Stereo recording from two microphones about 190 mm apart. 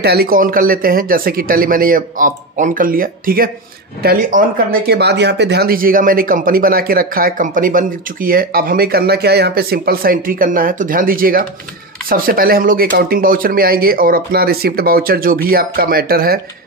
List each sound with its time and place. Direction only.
0.0 s speech: 55° right (ahead or behind)